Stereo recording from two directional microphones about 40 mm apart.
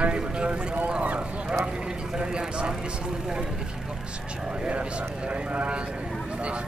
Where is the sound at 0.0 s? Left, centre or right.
Right.